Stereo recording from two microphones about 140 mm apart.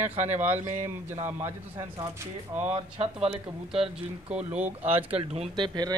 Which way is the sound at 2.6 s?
50° right (ahead or behind).